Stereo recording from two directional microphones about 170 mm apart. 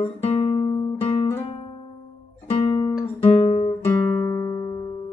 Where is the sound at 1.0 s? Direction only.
35° left (ahead or behind).